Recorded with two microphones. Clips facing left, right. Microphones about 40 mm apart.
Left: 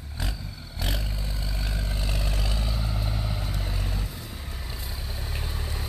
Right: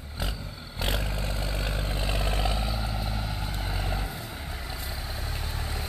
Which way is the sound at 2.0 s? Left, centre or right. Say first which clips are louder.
Right 5 dB; right.